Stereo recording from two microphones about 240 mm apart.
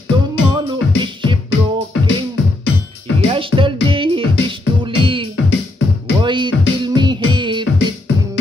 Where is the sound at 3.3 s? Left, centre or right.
Right.